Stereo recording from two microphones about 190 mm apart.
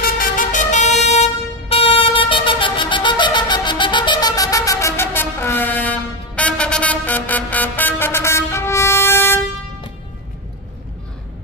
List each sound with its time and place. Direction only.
0.0 s vehicle: 50° left (ahead or behind); by 9.4 s 10° left (ahead or behind)